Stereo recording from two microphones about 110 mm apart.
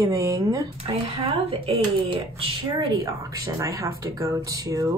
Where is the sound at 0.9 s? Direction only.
65° right (ahead or behind).